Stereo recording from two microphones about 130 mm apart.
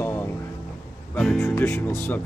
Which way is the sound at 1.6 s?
20° left (ahead or behind).